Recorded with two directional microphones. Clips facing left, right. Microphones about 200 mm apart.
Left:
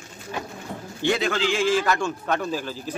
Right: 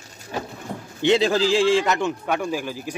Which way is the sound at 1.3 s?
35° right (ahead or behind).